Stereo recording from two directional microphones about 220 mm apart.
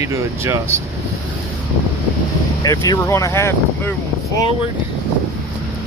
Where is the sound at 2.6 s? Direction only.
15° left (ahead or behind).